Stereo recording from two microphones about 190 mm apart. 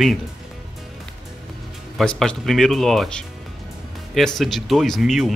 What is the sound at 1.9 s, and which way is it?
Speech, 5° left (ahead or behind).